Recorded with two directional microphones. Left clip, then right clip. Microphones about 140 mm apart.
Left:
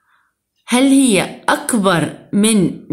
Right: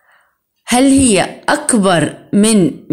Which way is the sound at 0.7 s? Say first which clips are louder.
Right 2 dB; 30° right (ahead or behind).